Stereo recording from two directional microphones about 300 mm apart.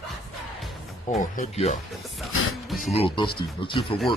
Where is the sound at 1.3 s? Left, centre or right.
Left.